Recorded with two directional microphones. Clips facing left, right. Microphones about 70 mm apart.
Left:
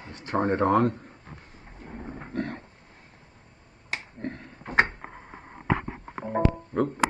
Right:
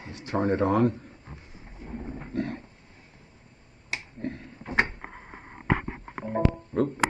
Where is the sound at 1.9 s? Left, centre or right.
Left.